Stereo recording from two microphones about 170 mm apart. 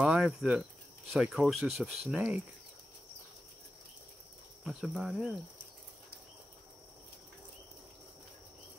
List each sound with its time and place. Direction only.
0.0 s speech: 5° right (ahead or behind)
4.6 s speech: centre (ahead or behind)